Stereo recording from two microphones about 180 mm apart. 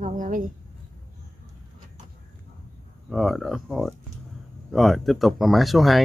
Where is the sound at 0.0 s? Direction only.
45° right (ahead or behind).